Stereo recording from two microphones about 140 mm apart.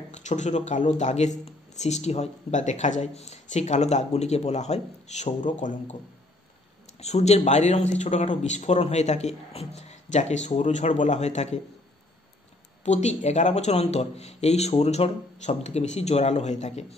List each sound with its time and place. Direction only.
0.1 s speech: 55° left (ahead or behind)
7.0 s speech: 50° left (ahead or behind)
12.8 s speech: 55° left (ahead or behind)